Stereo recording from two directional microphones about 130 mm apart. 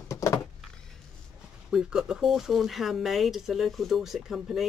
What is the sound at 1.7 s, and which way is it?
Speech, 5° right (ahead or behind).